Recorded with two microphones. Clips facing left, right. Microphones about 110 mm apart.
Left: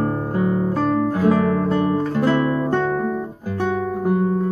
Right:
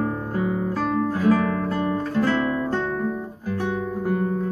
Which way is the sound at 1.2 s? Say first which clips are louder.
Left 1 dB; 15° left (ahead or behind).